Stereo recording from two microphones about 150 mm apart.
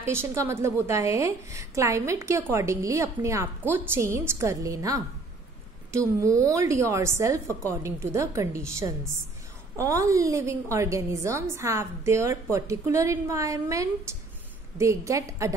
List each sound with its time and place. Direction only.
0.0 s a woman's voice: 15° right (ahead or behind)